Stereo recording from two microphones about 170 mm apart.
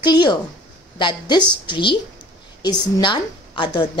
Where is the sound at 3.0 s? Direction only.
30° left (ahead or behind).